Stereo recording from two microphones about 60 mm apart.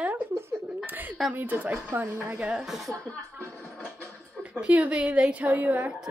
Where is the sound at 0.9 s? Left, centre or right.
Right.